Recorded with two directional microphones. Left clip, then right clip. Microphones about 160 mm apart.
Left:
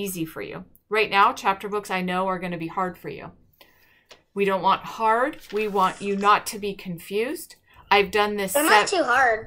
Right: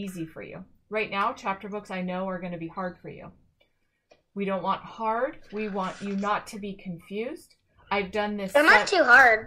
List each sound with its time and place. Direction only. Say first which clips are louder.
0.3 s speech: left 7 dB; 20° left (ahead or behind)
4.4 s speech: left 7 dB; 15° left (ahead or behind)
5.9 s a woman's voice: left 7 dB; 25° right (ahead or behind)
6.2 s speech: left 9 dB; 15° left (ahead or behind)
8.5 s a woman's voice: even; 25° right (ahead or behind)